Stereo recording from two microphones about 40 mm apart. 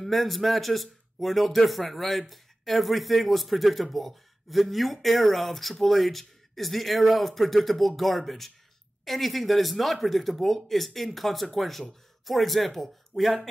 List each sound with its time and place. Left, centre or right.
0.0 s a man's voice: centre